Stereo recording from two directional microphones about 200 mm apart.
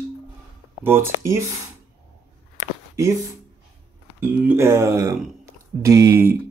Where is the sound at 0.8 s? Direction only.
10° right (ahead or behind).